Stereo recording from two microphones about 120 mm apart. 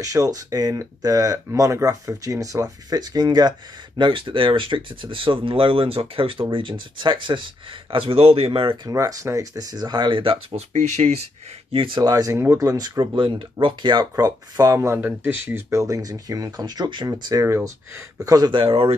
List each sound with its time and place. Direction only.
0.0 s speech: 30° right (ahead or behind); by 8.7 s 50° right (ahead or behind)
8.8 s speech: 30° right (ahead or behind); by 10.6 s 45° right (ahead or behind)
10.7 s speech: 70° right (ahead or behind)
11.7 s speech: 45° right (ahead or behind)